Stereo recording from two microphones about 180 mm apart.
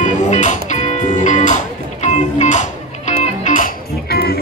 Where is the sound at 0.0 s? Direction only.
45° left (ahead or behind).